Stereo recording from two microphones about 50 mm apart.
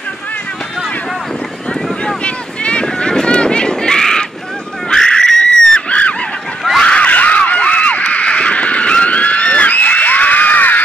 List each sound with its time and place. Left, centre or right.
1.7 s vehicle: left
4.8 s screaming: centre
5.9 s goose: left
6.8 s a sound: left